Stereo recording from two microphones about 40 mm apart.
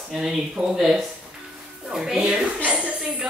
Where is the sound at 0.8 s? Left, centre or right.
Centre.